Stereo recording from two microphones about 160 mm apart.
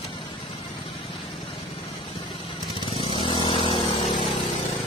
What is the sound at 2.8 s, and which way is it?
Vehicle, 35° left (ahead or behind).